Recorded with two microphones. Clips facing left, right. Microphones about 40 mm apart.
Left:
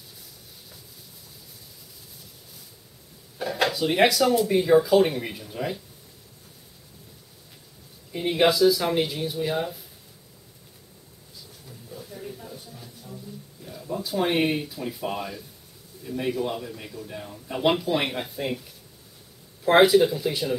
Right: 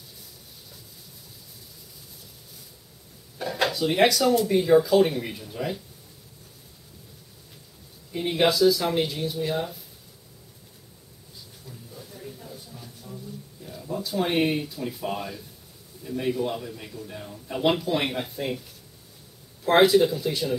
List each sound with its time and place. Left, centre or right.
3.3 s speech: centre
8.1 s speech: centre
12.2 s a sound: left
12.7 s a sound: centre
13.7 s a man's voice: centre
19.6 s speech: centre